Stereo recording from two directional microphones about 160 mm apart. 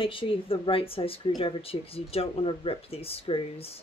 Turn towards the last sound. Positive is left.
turn(degrees=35)  # may be behind; listen again after turning